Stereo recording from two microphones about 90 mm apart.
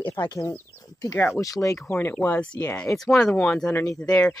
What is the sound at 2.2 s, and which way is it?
Speech, 15° left (ahead or behind).